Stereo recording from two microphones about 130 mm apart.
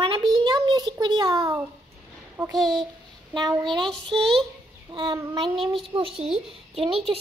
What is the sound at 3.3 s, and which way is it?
Speech, 35° right (ahead or behind).